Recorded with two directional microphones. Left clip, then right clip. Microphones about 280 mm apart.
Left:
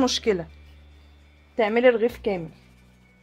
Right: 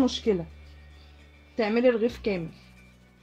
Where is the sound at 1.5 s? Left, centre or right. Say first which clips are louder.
Left 4 dB; left.